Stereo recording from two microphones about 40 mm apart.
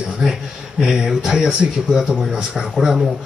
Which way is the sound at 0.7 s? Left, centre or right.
Centre.